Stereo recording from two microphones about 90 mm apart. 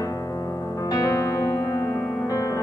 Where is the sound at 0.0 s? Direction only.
40° left (ahead or behind).